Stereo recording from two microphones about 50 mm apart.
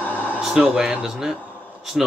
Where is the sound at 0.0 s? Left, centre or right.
Left.